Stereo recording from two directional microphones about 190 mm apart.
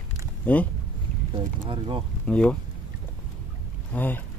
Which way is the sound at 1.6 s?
25° right (ahead or behind).